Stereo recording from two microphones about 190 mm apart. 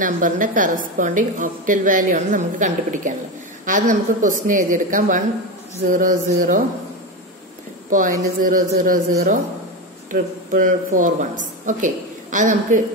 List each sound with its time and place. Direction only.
0.0 s speech: 45° right (ahead or behind)
7.9 s speech: 45° right (ahead or behind)
10.1 s speech: 45° right (ahead or behind)